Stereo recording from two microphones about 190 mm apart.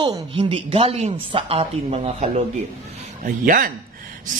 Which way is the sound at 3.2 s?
45° right (ahead or behind).